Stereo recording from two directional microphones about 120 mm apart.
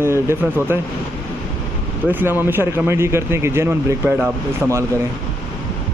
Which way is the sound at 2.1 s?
15° right (ahead or behind).